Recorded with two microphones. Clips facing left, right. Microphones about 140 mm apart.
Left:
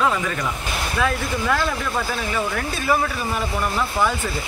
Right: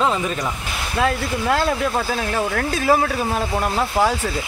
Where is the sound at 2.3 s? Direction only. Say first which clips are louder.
Right 4 dB; 75° right (ahead or behind).